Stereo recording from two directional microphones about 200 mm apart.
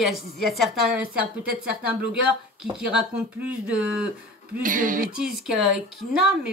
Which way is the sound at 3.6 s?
5° right (ahead or behind).